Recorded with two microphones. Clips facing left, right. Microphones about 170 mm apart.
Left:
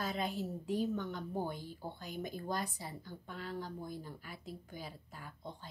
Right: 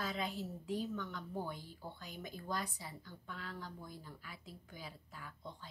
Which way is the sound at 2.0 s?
45° left (ahead or behind).